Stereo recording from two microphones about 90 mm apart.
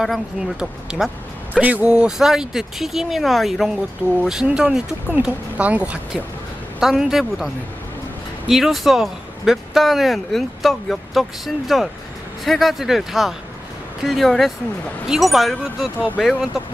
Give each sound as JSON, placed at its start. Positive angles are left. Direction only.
{"t": 0.0, "sound": "speech", "side_deg": 0}
{"t": 1.6, "sound": "speech", "side_deg": -15}
{"t": 6.8, "sound": "speech", "side_deg": -5}